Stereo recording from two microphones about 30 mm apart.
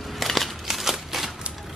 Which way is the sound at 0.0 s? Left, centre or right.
Centre.